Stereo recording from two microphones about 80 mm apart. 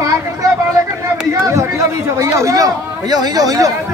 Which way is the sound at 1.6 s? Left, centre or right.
Right.